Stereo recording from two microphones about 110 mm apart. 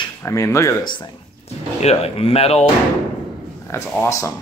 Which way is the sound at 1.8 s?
70° left (ahead or behind).